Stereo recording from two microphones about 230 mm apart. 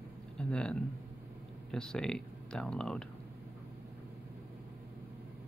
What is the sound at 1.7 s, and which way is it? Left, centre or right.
Speech, centre.